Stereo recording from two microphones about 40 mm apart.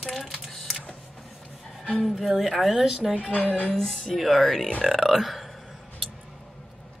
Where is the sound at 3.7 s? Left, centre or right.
Centre.